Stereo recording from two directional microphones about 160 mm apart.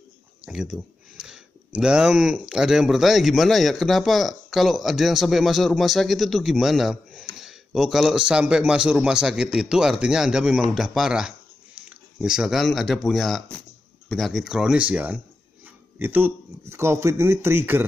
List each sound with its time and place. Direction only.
0.5 s speech: 5° right (ahead or behind)